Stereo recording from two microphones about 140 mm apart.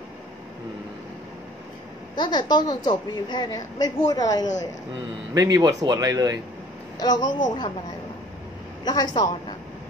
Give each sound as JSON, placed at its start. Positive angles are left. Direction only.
{"t": 2.1, "sound": "a woman's voice", "side_deg": 35}
{"t": 5.3, "sound": "speech", "side_deg": -25}
{"t": 7.0, "sound": "a woman's voice", "side_deg": 30}
{"t": 8.8, "sound": "a woman's voice", "side_deg": 30}